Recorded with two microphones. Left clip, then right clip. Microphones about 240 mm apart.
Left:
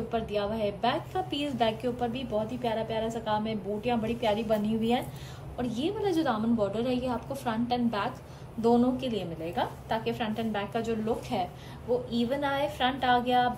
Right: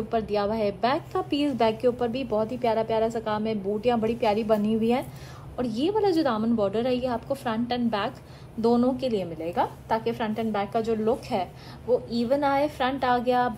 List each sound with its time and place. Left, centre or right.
0.1 s a woman's voice: centre